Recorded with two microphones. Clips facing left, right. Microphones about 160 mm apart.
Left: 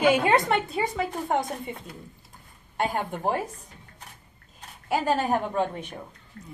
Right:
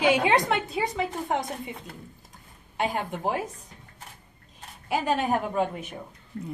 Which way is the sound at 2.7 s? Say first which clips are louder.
Left 1 dB; centre (ahead or behind).